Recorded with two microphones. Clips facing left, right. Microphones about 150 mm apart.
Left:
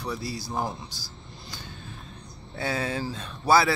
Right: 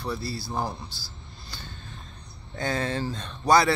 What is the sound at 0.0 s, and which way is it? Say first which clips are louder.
Speech: right 1 dB; 15° left (ahead or behind).